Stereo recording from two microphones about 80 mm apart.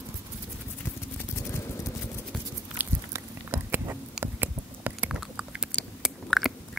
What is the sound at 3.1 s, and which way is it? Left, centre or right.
Patter, right.